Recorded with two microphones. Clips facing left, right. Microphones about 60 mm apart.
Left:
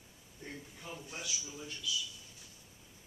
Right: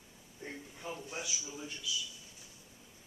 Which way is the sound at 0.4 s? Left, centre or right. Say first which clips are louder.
Right 2 dB; centre.